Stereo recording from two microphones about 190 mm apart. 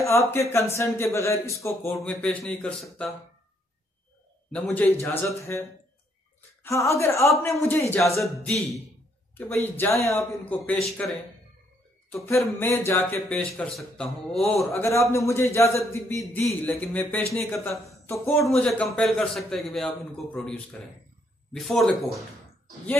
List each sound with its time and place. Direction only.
0.0 s a man's voice: 15° left (ahead or behind)
4.5 s a man's voice: 5° left (ahead or behind)
9.3 s speech: 10° left (ahead or behind)
12.1 s speech: 15° left (ahead or behind)
14.7 s speech: 15° left (ahead or behind)
18.4 s a man's voice: centre (ahead or behind)